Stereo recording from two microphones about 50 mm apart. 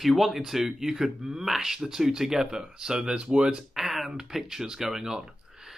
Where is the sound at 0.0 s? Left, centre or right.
Centre.